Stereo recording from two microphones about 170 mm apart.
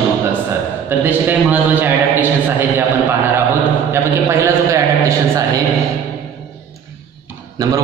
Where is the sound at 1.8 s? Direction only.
10° right (ahead or behind).